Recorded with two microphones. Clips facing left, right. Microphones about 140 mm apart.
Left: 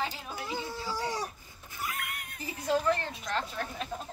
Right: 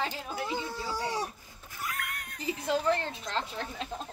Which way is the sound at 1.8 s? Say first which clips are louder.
Even; 5° left (ahead or behind).